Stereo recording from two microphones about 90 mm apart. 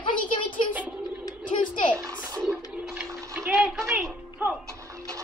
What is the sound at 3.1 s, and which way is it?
Bathtub, 30° right (ahead or behind).